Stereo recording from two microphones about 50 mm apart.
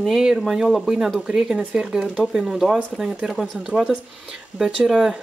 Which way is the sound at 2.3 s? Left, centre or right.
Centre.